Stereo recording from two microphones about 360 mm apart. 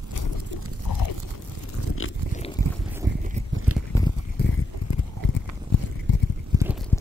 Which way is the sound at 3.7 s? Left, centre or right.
Right.